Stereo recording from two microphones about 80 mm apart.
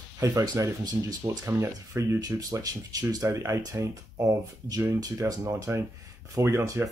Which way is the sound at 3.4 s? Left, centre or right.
Right.